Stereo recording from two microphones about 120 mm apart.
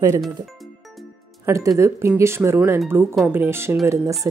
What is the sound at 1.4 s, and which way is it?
Speech, 25° right (ahead or behind).